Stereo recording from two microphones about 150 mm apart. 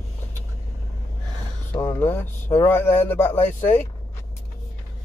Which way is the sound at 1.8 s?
30° left (ahead or behind).